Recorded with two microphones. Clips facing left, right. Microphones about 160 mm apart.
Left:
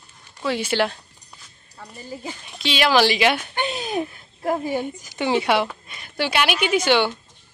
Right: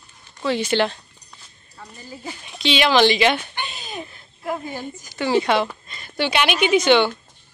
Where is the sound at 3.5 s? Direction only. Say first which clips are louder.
Left 7 dB; 55° left (ahead or behind).